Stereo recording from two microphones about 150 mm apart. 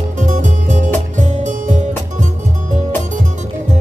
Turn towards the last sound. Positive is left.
turn(degrees=-55)  # may be behind; listen again after turning